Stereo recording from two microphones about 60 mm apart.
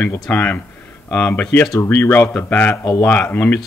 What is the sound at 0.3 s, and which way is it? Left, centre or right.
Speech, left.